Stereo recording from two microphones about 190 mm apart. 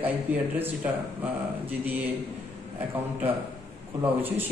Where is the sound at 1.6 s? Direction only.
10° right (ahead or behind).